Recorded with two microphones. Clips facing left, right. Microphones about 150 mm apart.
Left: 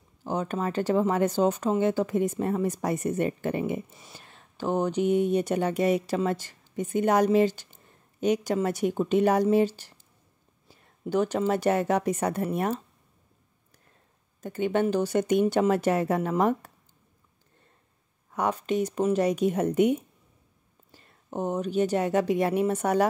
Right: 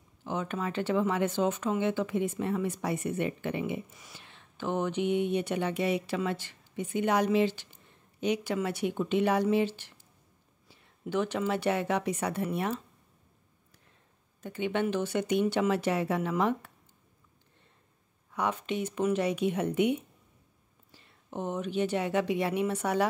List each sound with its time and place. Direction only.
0.2 s speech: 40° left (ahead or behind)
14.4 s speech: 45° left (ahead or behind)
18.3 s speech: 45° left (ahead or behind)